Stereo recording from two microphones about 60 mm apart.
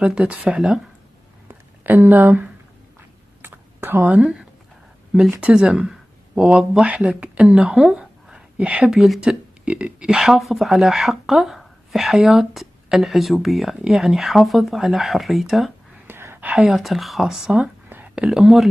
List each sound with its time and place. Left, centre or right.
0.0 s speech: centre
1.5 s a sound: right
3.4 s typing: right
4.1 s speech: right
5.4 s speech: centre
7.7 s a sound: centre
8.5 s speech: centre
8.9 s speech: centre
9.2 s speech: centre
10.0 s speech: centre
16.1 s a sound: right
16.5 s speech: centre